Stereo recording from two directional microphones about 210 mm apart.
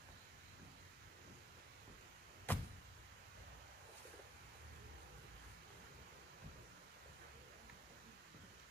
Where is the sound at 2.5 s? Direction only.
10° left (ahead or behind).